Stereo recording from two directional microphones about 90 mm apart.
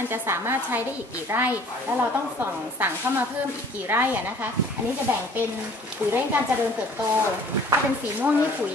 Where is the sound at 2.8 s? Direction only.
20° right (ahead or behind).